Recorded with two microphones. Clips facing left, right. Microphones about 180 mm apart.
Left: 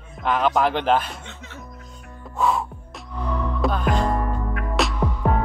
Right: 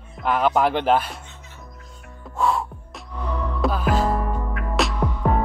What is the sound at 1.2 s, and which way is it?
Music, 85° left.